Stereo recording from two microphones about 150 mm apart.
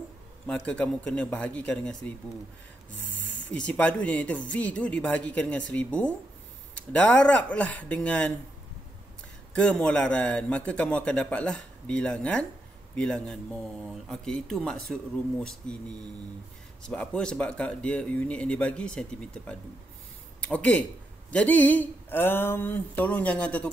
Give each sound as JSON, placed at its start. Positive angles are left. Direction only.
{"t": 0.5, "sound": "a man's voice", "side_deg": 10}
{"t": 3.5, "sound": "a man's voice", "side_deg": 10}
{"t": 9.6, "sound": "a man's voice", "side_deg": 5}
{"t": 16.8, "sound": "a man's voice", "side_deg": 5}